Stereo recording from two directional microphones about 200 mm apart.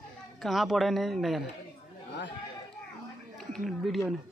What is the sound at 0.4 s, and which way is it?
Speech, centre (ahead or behind).